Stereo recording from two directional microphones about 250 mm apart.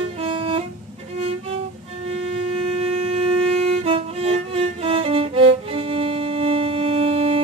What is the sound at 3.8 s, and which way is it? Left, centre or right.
Music, right.